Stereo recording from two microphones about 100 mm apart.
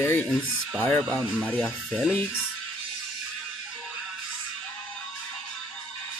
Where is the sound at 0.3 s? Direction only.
10° left (ahead or behind).